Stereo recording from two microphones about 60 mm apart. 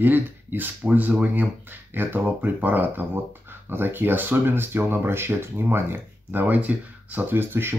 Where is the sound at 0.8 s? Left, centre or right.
Right.